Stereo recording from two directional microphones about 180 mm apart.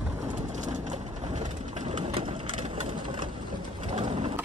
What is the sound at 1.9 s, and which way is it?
Vehicle, 30° right (ahead or behind).